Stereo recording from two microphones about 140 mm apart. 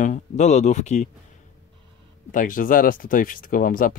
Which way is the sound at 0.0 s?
60° left (ahead or behind).